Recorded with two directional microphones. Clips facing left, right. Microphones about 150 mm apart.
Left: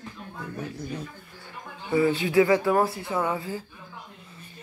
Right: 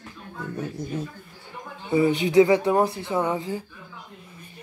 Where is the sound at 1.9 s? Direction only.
20° right (ahead or behind).